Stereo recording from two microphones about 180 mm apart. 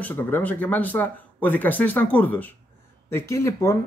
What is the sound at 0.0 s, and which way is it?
Speech, 10° left (ahead or behind).